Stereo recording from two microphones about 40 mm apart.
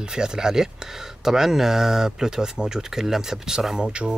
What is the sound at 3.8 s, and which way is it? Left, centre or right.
Speech, right.